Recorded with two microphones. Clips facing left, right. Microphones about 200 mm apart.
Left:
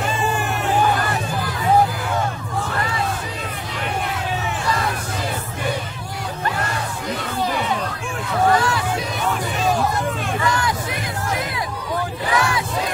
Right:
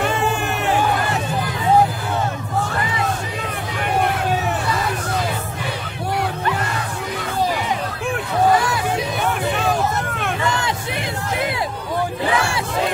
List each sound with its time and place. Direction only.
12.4 s battle cry: 30° right (ahead or behind)